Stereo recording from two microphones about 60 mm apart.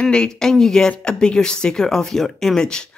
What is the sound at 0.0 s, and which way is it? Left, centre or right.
Speech, centre.